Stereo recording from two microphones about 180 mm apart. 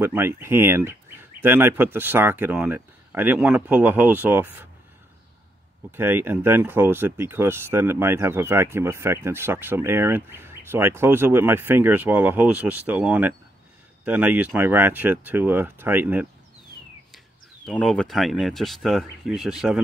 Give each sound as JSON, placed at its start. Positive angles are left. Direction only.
{"t": 0.0, "sound": "speech", "side_deg": -15}
{"t": 5.9, "sound": "speech", "side_deg": -10}
{"t": 17.6, "sound": "speech", "side_deg": 5}